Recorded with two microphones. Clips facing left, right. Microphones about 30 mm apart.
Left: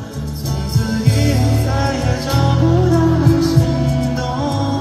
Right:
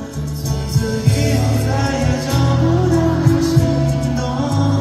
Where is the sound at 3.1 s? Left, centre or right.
Left.